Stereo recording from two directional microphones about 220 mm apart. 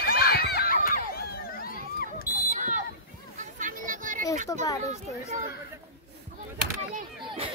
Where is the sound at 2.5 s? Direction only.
35° right (ahead or behind).